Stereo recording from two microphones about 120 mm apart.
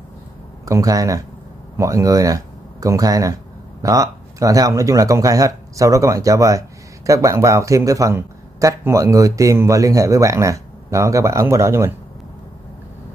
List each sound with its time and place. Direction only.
0.7 s speech: 30° right (ahead or behind)